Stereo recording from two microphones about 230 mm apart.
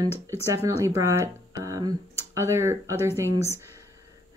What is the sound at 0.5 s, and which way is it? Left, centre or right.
Speech, centre.